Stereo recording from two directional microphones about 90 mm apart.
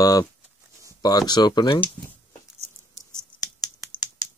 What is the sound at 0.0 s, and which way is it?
Speech, 40° left (ahead or behind).